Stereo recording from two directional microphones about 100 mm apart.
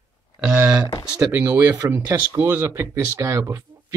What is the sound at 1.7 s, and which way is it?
Speech, 25° right (ahead or behind).